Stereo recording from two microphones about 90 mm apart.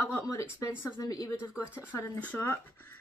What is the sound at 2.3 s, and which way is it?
Speech, 25° left (ahead or behind).